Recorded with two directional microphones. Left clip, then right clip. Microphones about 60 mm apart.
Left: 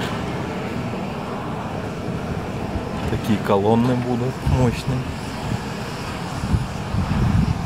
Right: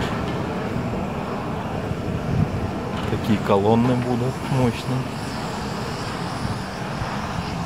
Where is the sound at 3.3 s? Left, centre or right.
Left.